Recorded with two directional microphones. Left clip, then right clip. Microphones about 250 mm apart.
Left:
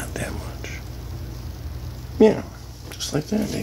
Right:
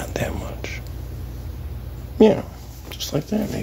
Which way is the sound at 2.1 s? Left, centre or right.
Centre.